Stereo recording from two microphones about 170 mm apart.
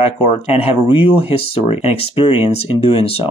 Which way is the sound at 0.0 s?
35° left (ahead or behind).